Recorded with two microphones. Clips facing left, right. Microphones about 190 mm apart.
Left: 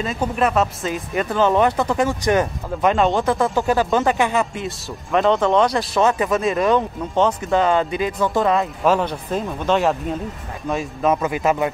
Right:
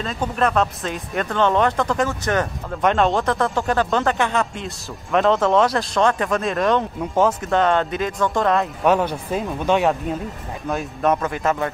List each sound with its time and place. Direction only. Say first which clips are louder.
0.0 s speech: left 1 dB; 5° left (ahead or behind)
2.8 s speech: left 1 dB; centre (ahead or behind)
11.2 s speech: left 3 dB; 15° left (ahead or behind)